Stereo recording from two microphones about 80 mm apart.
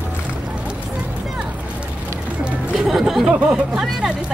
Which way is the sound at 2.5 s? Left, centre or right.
Centre.